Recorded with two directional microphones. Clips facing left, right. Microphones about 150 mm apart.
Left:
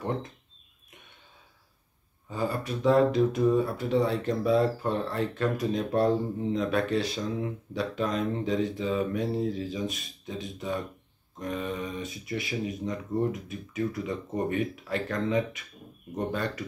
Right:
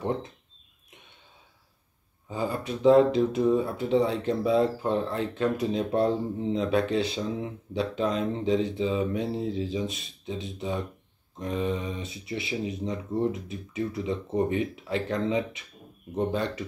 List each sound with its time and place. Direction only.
2.2 s speech: 25° right (ahead or behind)